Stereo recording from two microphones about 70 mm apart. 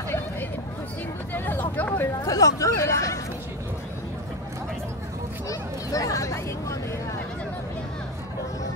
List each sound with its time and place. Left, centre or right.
1.3 s vehicle: left
2.2 s speech: left
5.5 s a sound: left